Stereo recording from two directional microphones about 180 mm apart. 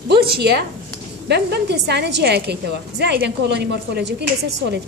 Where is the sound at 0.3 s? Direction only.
65° right (ahead or behind).